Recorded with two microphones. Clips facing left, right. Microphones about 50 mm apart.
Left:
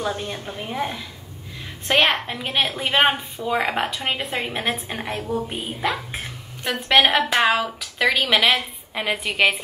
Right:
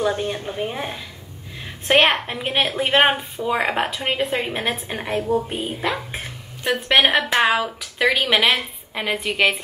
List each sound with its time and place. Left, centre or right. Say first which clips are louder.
0.1 s a woman's voice: right 4 dB; centre
2.0 s a woman's voice: right 2 dB; centre